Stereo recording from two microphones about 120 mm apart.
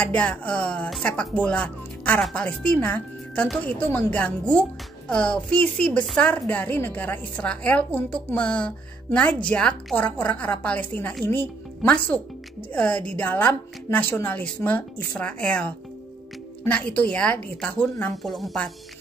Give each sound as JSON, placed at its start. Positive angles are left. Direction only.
{"t": 0.0, "sound": "a child's voice", "side_deg": 10}
{"t": 18.1, "sound": "speech", "side_deg": 0}